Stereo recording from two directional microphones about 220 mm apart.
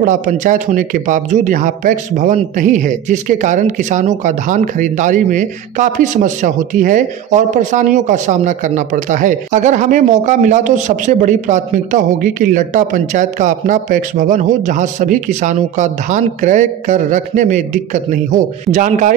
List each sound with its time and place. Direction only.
0.0 s speech: 35° right (ahead or behind)